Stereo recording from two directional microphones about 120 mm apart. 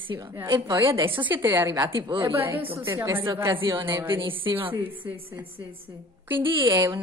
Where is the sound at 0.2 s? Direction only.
25° right (ahead or behind).